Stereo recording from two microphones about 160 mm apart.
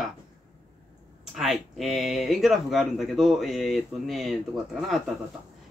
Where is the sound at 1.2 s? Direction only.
5° right (ahead or behind).